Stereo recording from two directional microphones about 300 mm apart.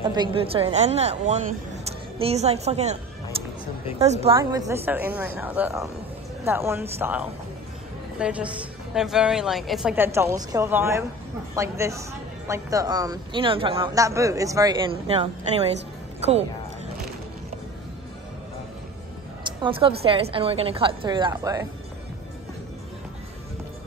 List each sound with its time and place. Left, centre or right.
0.0 s a woman's voice: centre
4.0 s a woman's voice: right
19.6 s a man's voice: centre